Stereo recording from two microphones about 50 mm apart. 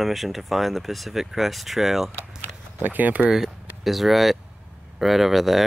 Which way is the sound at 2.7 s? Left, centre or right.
Right.